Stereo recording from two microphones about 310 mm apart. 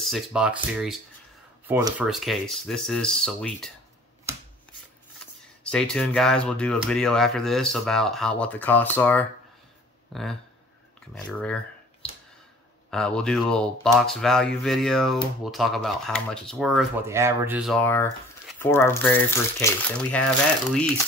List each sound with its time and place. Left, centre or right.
0.0 s speech: centre
1.7 s speech: centre
5.2 s speech: centre
12.0 s a sound: centre
12.9 s speech: centre